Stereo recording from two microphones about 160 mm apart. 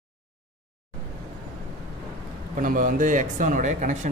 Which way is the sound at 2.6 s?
60° right (ahead or behind).